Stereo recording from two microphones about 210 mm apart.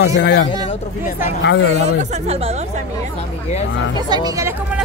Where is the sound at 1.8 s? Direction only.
30° right (ahead or behind).